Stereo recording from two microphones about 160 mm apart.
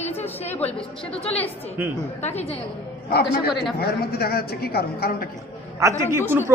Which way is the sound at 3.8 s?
75° left (ahead or behind).